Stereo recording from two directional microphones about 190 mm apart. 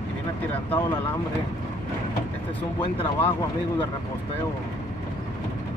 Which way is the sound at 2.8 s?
30° left (ahead or behind).